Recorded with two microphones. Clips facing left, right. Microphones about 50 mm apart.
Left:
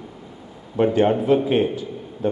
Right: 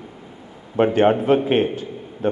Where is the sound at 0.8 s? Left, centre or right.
Right.